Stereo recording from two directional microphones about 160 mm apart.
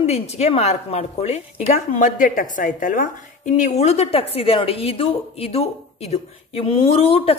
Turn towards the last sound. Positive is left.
turn(degrees=35)  # may be behind; listen again after turning